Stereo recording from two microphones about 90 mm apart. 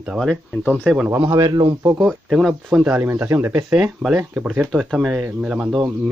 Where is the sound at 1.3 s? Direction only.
45° right (ahead or behind).